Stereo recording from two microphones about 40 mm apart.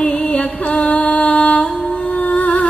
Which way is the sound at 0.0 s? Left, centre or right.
Left.